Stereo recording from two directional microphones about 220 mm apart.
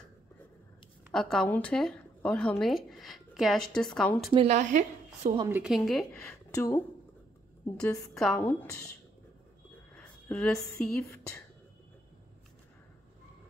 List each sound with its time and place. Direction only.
1.1 s a woman's voice: 5° left (ahead or behind)
4.3 s a woman's voice: 25° right (ahead or behind)
5.5 s a woman's voice: 5° right (ahead or behind)
6.5 s a woman's voice: 15° left (ahead or behind)
7.8 s a woman's voice: 5° left (ahead or behind)
9.9 s speech: 5° left (ahead or behind)